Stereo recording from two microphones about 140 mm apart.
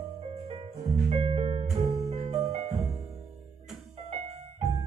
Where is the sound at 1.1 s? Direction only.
45° right (ahead or behind).